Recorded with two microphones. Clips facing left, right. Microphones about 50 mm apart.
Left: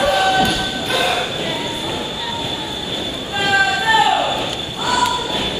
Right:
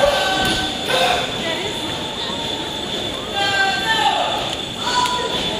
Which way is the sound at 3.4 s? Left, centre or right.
Centre.